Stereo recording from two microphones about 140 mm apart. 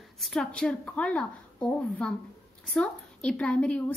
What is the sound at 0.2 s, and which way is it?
A woman's voice, centre (ahead or behind).